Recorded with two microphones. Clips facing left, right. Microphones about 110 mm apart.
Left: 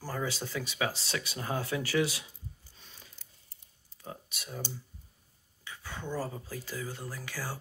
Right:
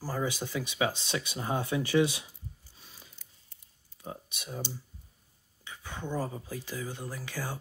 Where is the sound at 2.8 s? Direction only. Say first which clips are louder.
Right 1 dB; 5° right (ahead or behind).